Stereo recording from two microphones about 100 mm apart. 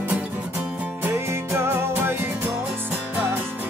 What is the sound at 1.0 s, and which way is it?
Music, 25° right (ahead or behind).